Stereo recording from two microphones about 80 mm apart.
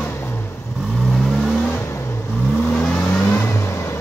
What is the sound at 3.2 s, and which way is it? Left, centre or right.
Vehicle, left.